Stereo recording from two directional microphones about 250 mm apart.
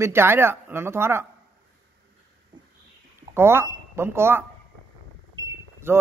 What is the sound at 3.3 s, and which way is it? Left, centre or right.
Speech, centre.